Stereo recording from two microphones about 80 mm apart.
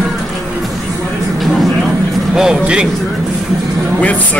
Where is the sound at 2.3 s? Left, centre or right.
Centre.